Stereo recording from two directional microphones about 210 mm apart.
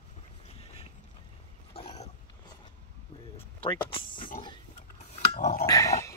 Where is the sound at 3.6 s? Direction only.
25° left (ahead or behind).